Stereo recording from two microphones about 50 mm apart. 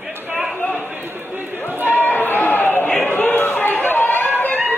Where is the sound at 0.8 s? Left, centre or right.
Right.